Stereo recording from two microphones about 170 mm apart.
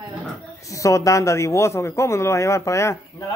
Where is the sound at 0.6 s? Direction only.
20° left (ahead or behind).